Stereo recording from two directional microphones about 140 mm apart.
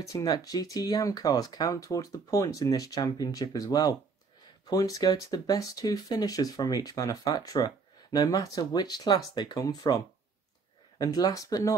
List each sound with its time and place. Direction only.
0.1 s speech: 25° left (ahead or behind)